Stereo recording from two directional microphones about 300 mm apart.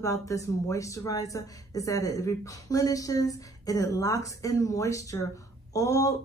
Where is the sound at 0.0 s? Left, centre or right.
Centre.